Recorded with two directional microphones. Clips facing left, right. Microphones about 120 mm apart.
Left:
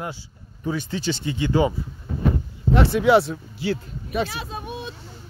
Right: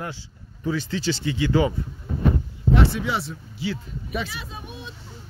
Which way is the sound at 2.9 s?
60° left (ahead or behind).